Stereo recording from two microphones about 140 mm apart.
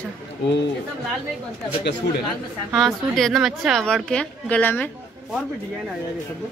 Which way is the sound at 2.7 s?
Centre (ahead or behind).